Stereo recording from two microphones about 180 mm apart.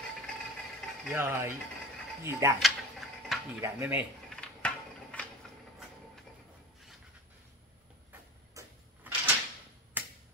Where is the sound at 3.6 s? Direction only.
10° right (ahead or behind).